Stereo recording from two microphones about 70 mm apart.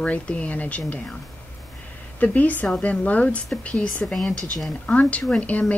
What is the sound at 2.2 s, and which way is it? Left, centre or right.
A woman's voice, left.